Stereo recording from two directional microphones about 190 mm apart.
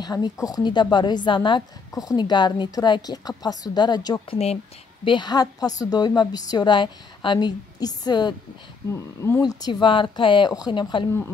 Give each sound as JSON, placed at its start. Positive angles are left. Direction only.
{"t": 0.0, "sound": "a woman's voice", "side_deg": 20}